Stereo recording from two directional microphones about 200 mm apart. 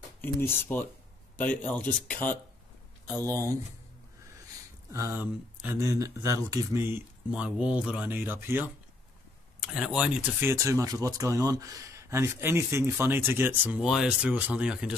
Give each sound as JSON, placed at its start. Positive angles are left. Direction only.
{"t": 0.5, "sound": "speech", "side_deg": 10}
{"t": 3.2, "sound": "speech", "side_deg": -15}
{"t": 4.9, "sound": "speech", "side_deg": -15}